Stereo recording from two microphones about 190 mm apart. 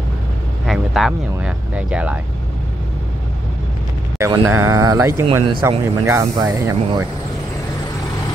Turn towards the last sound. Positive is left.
turn(degrees=-15)  # may be behind; listen again after turning